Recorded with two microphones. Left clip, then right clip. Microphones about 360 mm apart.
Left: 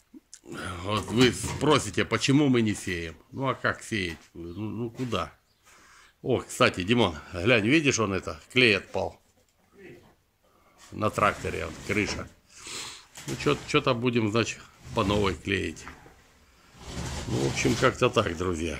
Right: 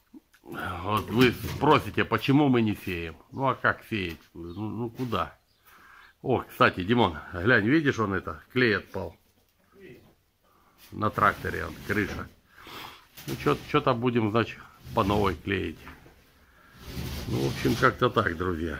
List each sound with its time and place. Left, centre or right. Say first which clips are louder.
0.5 s speech: right 2 dB; centre
11.0 s speech: right 1 dB; centre
17.8 s speech: right 1 dB; centre